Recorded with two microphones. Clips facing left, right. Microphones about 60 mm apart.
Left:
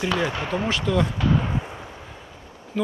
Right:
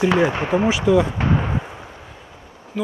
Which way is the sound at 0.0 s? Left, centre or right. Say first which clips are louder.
Right 7 dB; right.